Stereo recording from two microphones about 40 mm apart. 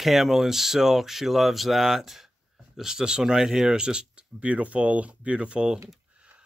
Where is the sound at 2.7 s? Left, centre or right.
Centre.